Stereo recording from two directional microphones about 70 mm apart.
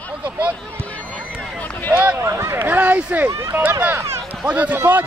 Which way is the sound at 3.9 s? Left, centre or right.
Right.